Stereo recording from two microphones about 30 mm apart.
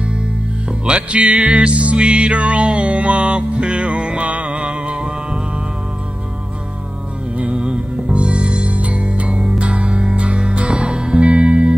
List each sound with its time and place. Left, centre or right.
0.8 s music: right
4.3 s music: right
4.6 s music: right
7.3 s music: right
8.6 s music: right
11.2 s music: right